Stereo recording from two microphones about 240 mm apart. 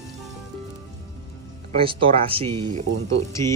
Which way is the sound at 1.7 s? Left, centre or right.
Right.